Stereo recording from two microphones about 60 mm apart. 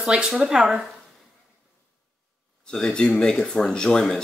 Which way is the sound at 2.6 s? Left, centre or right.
Centre.